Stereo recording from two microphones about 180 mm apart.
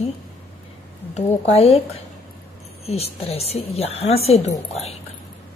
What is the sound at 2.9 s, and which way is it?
A woman's voice, 35° left (ahead or behind).